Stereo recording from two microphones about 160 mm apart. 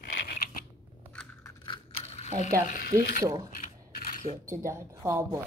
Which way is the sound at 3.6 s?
55° left (ahead or behind).